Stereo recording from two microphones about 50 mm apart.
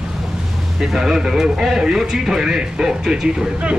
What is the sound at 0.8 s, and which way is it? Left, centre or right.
Speech, centre.